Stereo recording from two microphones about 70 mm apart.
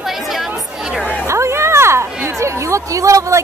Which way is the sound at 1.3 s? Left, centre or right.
Right.